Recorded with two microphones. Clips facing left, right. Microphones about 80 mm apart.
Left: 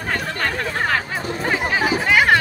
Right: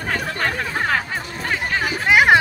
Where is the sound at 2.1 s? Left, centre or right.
Centre.